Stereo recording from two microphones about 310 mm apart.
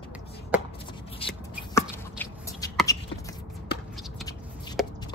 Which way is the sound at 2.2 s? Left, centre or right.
Centre.